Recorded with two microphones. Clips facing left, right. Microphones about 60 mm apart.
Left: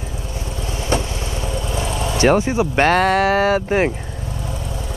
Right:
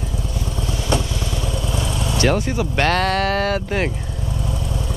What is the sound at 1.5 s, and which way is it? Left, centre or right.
Vehicle, left.